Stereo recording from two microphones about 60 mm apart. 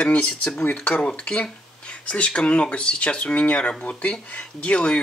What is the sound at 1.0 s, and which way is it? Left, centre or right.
Speech, centre.